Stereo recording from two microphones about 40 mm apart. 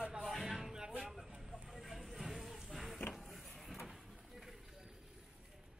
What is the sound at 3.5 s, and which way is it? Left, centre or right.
Vehicle, centre.